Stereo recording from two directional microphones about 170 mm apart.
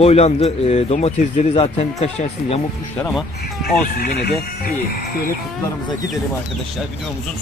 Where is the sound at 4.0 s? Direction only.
70° left (ahead or behind).